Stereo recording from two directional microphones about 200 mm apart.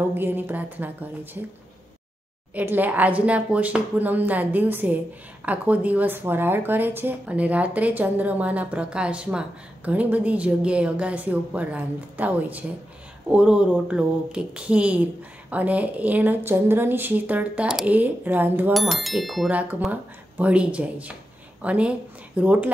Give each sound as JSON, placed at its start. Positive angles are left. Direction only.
{"t": 0.1, "sound": "speech", "side_deg": -10}
{"t": 2.5, "sound": "speech", "side_deg": -10}